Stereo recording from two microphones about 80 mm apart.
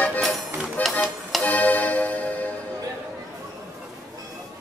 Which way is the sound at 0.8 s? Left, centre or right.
Left.